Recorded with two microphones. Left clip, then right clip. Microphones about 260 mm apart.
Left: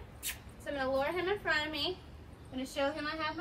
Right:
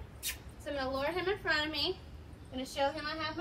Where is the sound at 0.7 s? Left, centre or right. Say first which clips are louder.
Left 2 dB; centre.